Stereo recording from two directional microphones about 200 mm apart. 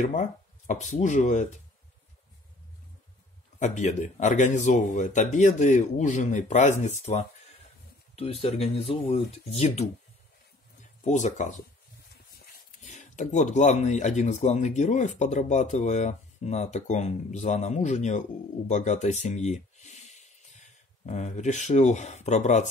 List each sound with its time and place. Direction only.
0.0 s speech: 40° left (ahead or behind)
3.5 s speech: 35° left (ahead or behind)
11.1 s speech: 35° left (ahead or behind)
12.8 s speech: 35° left (ahead or behind)